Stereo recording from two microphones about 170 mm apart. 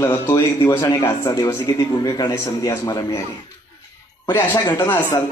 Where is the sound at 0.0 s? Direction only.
15° left (ahead or behind).